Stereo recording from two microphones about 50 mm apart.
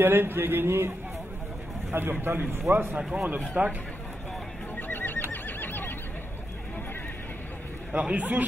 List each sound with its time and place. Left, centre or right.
0.0 s a man's voice: right
4.7 s neigh: left
7.9 s a man's voice: right